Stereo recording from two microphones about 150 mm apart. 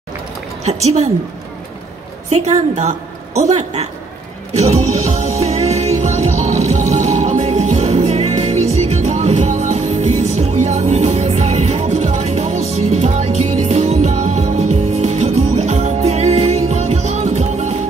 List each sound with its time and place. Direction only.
0.7 s a woman's voice: 45° right (ahead or behind)
2.2 s a woman's voice: 45° right (ahead or behind)
4.6 s music: 45° right (ahead or behind)